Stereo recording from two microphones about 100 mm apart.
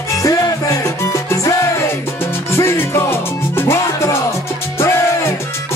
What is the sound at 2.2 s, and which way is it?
Salsa music, 25° left (ahead or behind).